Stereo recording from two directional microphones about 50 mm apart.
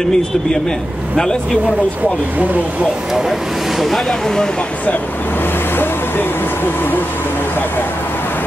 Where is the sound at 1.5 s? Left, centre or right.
Right.